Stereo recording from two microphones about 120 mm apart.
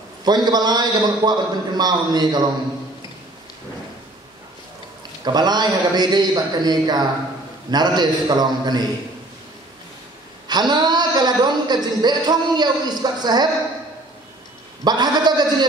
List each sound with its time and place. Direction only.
0.2 s a woman's voice: 35° right (ahead or behind)
5.2 s a woman's voice: 35° right (ahead or behind)
10.5 s a woman's voice: 35° right (ahead or behind)
14.9 s a woman's voice: 35° right (ahead or behind)